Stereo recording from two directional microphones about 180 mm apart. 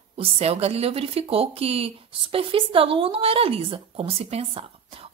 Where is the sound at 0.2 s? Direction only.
35° right (ahead or behind).